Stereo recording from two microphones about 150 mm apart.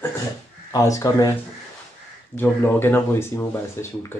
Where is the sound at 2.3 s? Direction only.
15° left (ahead or behind).